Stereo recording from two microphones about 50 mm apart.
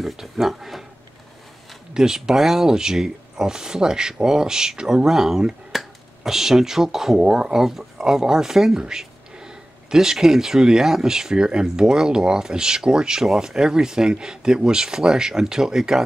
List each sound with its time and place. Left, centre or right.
0.0 s speech: centre
2.0 s speech: centre